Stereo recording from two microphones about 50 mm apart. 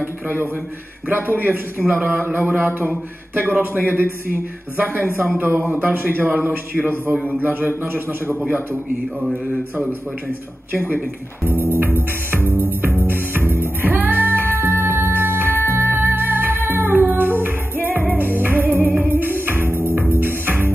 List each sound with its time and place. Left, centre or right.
0.0 s a man's voice: right
10.7 s speech: right
11.7 s music: right